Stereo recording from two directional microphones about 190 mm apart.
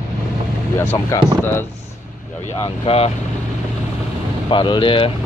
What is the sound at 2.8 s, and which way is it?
Speech, 30° left (ahead or behind).